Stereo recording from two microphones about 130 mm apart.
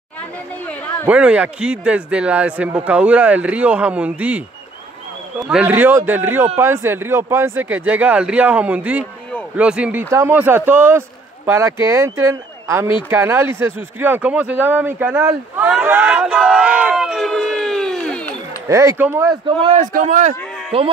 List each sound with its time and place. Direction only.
1.0 s speech: 10° right (ahead or behind)
5.4 s speech: 5° right (ahead or behind)
5.7 s speech: 15° right (ahead or behind)
10.0 s a man's voice: 20° right (ahead or behind)
15.7 s crowd: 15° right (ahead or behind); by 18.2 s centre (ahead or behind)
18.7 s a man's voice: 25° right (ahead or behind)
18.9 s speech: 15° right (ahead or behind)
19.4 s a man's voice: 45° right (ahead or behind)
19.8 s a man's voice: 80° right
20.7 s a man's voice: 45° right (ahead or behind)